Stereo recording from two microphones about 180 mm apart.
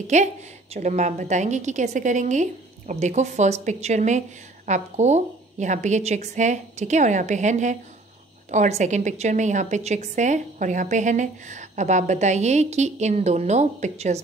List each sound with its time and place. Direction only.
0.0 s a woman's voice: 40° right (ahead or behind)